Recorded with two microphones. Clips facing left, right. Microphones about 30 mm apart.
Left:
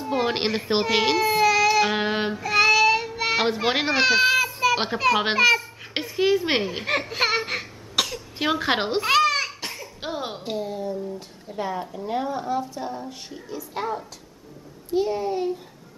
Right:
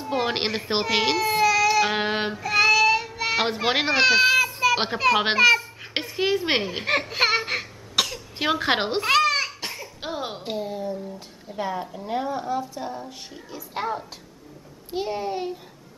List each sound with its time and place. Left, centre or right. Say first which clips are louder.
0.0 s baby cry: left 1 dB; centre
3.4 s speech: even; centre
4.7 s a sound: even; centre
13.7 s a child's voice: right 1 dB; centre